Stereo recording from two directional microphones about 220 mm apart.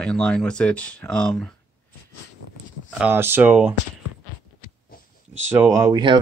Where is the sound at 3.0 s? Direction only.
10° right (ahead or behind).